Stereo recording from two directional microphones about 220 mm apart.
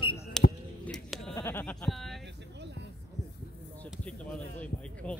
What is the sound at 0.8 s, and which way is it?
Sheep, centre (ahead or behind).